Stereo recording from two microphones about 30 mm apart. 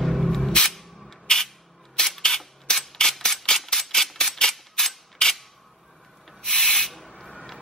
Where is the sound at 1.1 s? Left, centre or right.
Centre.